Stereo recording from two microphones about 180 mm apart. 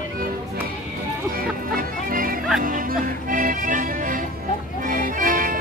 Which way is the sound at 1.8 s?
50° right (ahead or behind).